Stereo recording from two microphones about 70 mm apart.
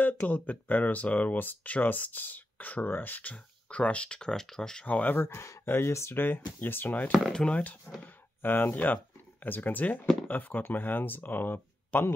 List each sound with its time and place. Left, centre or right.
0.0 s speech: left
4.8 s speech: left
7.2 s speech: centre
8.0 s speech: left